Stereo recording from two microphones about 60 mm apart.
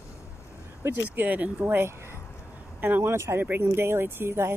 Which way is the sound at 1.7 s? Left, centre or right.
Right.